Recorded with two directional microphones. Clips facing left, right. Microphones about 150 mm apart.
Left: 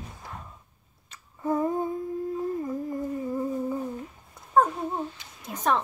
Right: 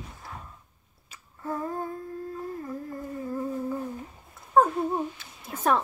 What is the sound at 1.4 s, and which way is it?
Humming, 20° left (ahead or behind).